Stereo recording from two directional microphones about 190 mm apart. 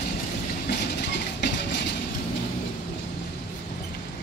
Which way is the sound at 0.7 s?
65° left (ahead or behind).